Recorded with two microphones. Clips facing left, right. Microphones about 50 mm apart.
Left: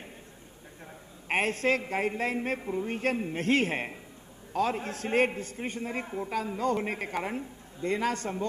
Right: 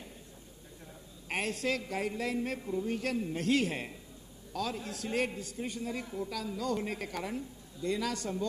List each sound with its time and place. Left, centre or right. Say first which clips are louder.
1.3 s a man's voice: left 6 dB; left